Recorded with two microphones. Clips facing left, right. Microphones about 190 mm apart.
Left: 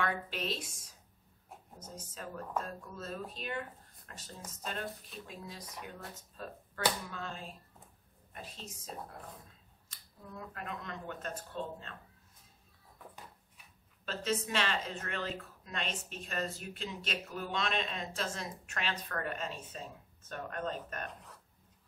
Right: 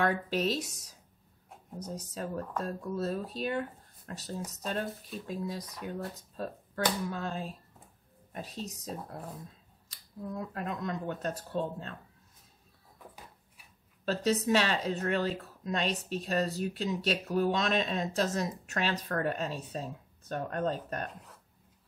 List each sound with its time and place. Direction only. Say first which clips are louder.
0.0 s speech: right 7 dB; 40° right (ahead or behind)
2.0 s speech: right 5 dB; 40° right (ahead or behind)
6.3 s a sound: right 7 dB; 40° right (ahead or behind)
7.1 s speech: right 7 dB; 40° right (ahead or behind)
14.0 s speech: right 7 dB; 40° right (ahead or behind)